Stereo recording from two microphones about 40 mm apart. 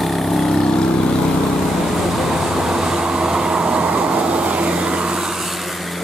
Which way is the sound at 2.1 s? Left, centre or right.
Centre.